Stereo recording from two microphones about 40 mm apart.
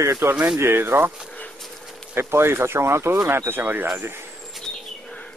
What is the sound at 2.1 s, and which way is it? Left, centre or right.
Speech, right.